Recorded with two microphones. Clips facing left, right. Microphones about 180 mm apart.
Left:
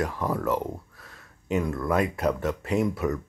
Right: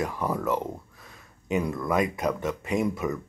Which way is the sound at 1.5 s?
15° right (ahead or behind).